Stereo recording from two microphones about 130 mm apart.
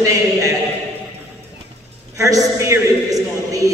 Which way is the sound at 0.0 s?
25° right (ahead or behind).